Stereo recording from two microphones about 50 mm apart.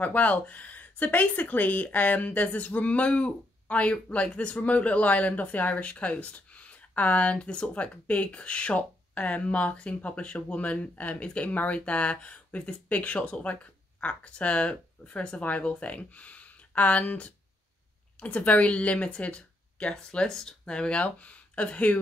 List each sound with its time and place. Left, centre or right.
0.0 s speech: left
21.0 s speech: left